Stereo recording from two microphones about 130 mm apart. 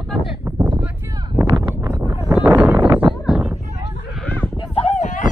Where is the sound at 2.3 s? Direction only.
10° right (ahead or behind).